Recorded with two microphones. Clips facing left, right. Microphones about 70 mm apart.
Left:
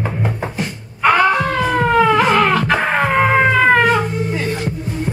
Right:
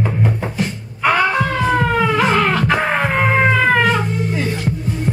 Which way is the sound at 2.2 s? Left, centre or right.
Left.